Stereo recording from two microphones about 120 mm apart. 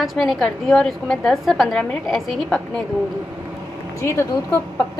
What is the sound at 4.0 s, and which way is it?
Speech, 20° left (ahead or behind).